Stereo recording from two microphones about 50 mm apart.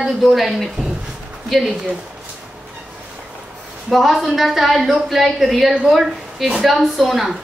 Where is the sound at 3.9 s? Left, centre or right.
Centre.